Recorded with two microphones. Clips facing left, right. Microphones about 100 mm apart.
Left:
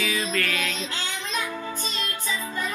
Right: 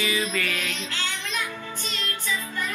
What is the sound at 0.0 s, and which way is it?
Speech, centre (ahead or behind).